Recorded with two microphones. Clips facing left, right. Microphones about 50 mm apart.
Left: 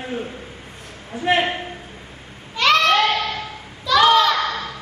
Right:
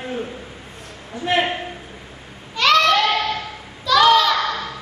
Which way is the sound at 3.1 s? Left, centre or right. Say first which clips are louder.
Right 2 dB; right.